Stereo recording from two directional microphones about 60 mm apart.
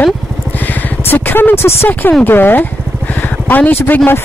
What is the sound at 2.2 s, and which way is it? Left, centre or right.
Speech, left.